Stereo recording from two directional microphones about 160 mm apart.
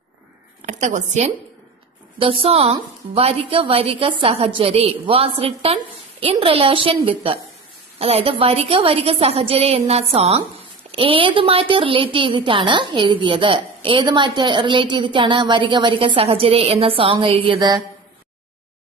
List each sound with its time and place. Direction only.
0.6 s a woman's voice: 50° right (ahead or behind)
2.1 s a woman's voice: 35° right (ahead or behind)